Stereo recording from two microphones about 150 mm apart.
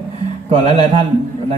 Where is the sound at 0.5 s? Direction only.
40° right (ahead or behind).